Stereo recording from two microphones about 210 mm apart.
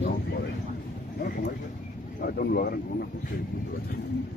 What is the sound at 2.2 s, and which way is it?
Speech, 45° left (ahead or behind).